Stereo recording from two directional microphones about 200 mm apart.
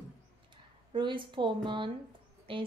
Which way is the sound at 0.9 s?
25° right (ahead or behind).